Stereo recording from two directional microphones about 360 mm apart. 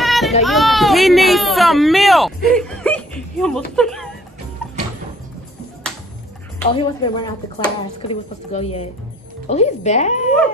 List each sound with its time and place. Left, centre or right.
0.0 s children playing: centre
0.4 s a sound: centre
6.7 s speech: centre